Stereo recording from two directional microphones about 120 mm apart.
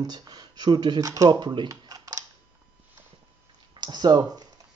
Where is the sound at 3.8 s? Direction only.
35° right (ahead or behind).